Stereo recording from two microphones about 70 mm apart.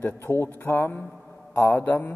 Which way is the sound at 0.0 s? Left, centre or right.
Left.